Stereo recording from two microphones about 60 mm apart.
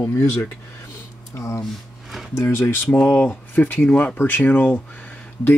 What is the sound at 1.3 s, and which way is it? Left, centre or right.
Speech, left.